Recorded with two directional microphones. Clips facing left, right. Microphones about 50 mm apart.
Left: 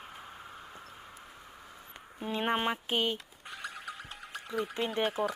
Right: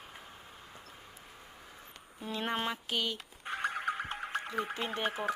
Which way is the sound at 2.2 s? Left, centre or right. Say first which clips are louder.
Left 4 dB; left.